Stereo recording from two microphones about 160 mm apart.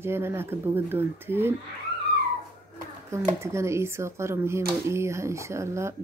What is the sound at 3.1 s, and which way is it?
A woman's voice, 15° right (ahead or behind).